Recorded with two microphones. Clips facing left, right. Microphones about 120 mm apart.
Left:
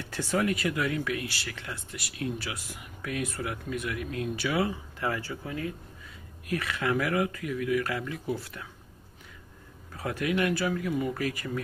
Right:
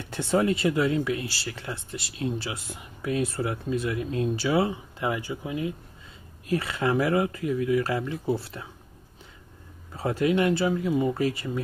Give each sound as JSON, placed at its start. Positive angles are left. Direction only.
{"t": 0.1, "sound": "speech", "side_deg": -25}
{"t": 9.9, "sound": "speech", "side_deg": -25}